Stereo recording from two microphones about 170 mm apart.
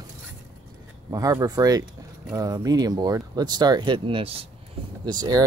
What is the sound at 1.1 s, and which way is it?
Speech, 20° right (ahead or behind).